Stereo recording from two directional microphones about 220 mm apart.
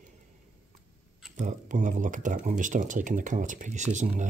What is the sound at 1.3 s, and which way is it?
Speech, 35° right (ahead or behind).